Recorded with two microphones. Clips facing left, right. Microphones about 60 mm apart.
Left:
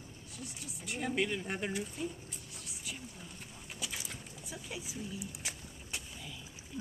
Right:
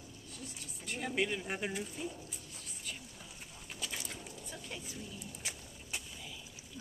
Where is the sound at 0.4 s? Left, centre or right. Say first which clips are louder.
Left 3 dB; centre.